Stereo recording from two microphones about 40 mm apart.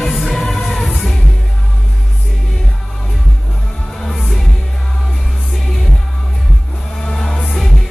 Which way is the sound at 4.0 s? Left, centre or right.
Centre.